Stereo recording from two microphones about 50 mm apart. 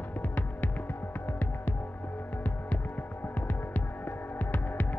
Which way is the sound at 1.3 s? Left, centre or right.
Left.